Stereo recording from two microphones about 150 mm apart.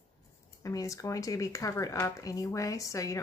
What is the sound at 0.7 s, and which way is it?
Speech, 20° left (ahead or behind).